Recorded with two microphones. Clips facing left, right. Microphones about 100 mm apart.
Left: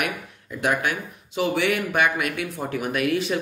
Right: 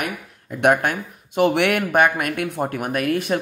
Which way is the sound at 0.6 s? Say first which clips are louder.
Right 6 dB; 55° right (ahead or behind).